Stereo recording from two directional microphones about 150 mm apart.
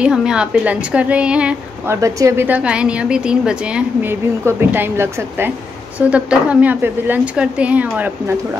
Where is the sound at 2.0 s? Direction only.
20° right (ahead or behind).